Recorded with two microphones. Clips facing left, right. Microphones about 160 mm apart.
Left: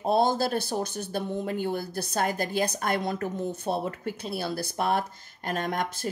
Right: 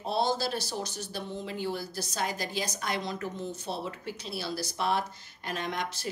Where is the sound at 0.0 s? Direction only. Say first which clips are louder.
Left 5 dB; 50° left (ahead or behind).